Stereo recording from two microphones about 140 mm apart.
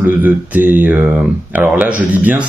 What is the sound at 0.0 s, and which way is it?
Speech, 15° right (ahead or behind).